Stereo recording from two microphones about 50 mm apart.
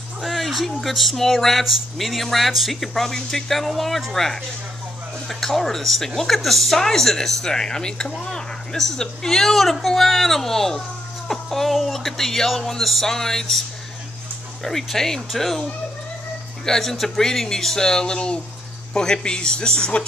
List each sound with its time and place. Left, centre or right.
0.2 s speech: centre